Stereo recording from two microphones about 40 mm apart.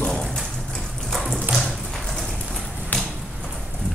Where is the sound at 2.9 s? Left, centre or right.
Left.